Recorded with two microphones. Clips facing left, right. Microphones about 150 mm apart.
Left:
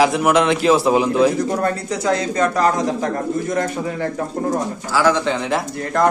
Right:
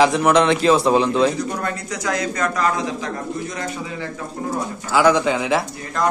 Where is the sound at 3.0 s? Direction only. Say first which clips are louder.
Left 5 dB; 50° left (ahead or behind).